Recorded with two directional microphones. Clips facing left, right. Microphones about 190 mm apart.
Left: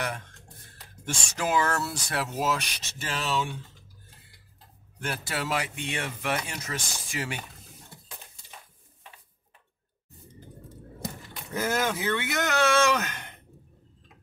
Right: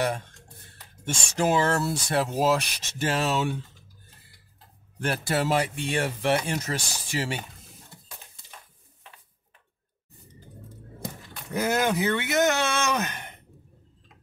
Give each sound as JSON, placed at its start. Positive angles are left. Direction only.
{"t": 1.0, "sound": "speech", "side_deg": -30}
{"t": 3.0, "sound": "speech", "side_deg": -55}
{"t": 5.0, "sound": "speech", "side_deg": -45}
{"t": 11.5, "sound": "speech", "side_deg": -15}